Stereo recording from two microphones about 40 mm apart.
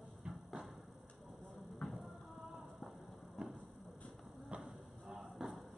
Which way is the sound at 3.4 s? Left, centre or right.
Centre.